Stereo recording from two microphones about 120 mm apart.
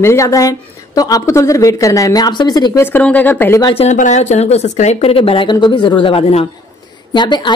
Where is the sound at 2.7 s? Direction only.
15° left (ahead or behind).